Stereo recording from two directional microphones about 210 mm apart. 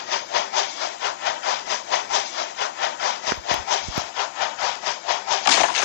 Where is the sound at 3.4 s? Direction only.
55° left (ahead or behind).